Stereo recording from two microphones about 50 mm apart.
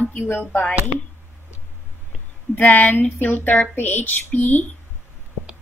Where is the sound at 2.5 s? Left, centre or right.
Left.